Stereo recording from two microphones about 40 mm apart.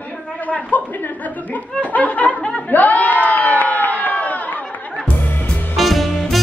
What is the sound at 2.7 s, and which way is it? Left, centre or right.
Crowd, left.